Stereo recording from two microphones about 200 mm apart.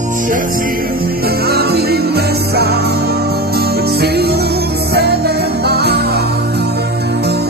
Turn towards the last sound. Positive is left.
turn(degrees=-55)  # may be behind; listen again after turning